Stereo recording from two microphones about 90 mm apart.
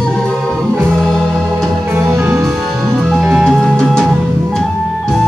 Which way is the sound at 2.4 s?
Centre (ahead or behind).